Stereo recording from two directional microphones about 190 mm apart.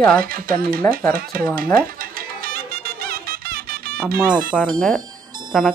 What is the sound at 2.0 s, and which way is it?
Music, 50° right (ahead or behind).